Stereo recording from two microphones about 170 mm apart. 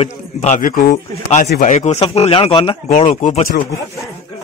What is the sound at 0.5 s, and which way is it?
A man's voice, 55° left (ahead or behind).